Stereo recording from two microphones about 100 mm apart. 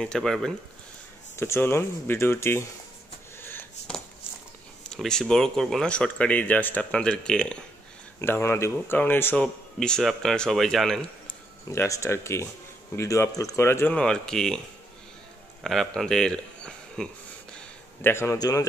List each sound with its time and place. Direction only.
0.0 s speech: 5° left (ahead or behind)
1.3 s speech: 25° left (ahead or behind)
4.9 s speech: 5° left (ahead or behind)
8.2 s speech: 25° left (ahead or behind)
9.8 s speech: 5° left (ahead or behind)
11.7 s speech: 25° left (ahead or behind)
13.9 s speech: 5° left (ahead or behind)
15.6 s speech: centre (ahead or behind)
18.0 s speech: 25° left (ahead or behind)